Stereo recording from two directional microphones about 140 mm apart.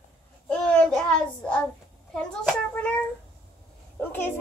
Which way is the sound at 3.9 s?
15° left (ahead or behind).